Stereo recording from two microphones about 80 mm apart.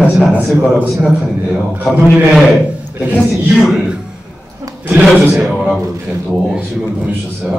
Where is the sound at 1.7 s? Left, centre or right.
Right.